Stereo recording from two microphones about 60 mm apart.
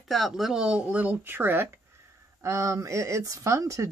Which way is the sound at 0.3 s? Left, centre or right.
Centre.